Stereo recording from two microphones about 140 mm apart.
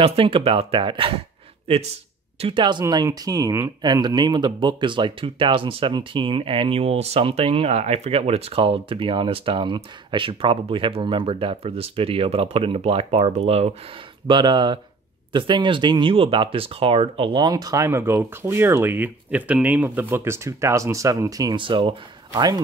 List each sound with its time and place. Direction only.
0.0 s speech: 40° right (ahead or behind)
2.8 s speech: 25° right (ahead or behind); by 13.7 s 50° right (ahead or behind)
14.2 s speech: 35° right (ahead or behind)